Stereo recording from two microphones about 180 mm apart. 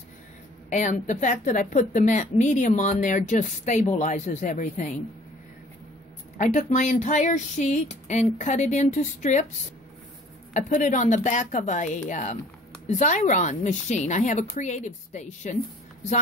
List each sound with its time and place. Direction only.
0.7 s speech: 40° left (ahead or behind)
6.3 s speech: 45° left (ahead or behind)
10.5 s speech: 45° left (ahead or behind)